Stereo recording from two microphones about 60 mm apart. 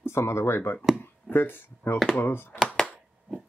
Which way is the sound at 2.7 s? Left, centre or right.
Centre.